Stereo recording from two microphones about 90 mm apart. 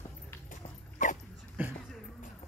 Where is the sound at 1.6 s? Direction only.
20° right (ahead or behind).